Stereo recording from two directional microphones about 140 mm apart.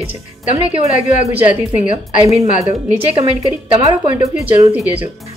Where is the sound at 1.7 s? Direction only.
60° left (ahead or behind).